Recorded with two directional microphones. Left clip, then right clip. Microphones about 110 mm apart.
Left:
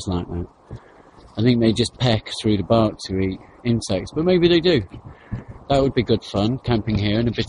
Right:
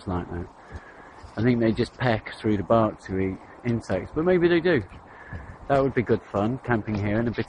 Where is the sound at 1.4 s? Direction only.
15° left (ahead or behind).